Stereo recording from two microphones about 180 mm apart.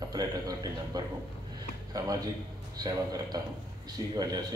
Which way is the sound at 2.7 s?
20° right (ahead or behind).